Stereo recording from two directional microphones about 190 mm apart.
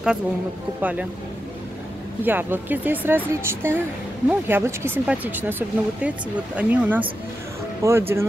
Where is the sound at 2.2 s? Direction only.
10° right (ahead or behind).